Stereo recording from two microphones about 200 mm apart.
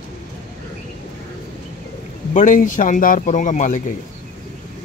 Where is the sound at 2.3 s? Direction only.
40° left (ahead or behind).